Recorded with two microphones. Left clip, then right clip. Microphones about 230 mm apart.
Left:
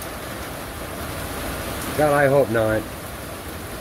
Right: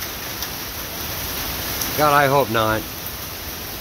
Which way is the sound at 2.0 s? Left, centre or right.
Right.